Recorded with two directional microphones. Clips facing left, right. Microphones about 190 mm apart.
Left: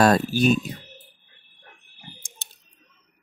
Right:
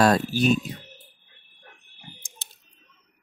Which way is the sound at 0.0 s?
50° left (ahead or behind).